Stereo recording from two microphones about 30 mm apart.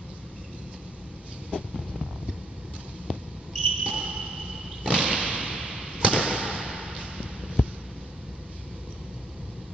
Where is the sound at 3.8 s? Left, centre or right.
Right.